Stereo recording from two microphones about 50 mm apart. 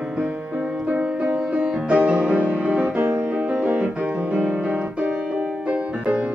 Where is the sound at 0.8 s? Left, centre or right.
Right.